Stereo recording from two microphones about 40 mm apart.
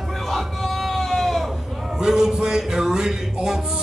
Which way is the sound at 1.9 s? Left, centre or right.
Centre.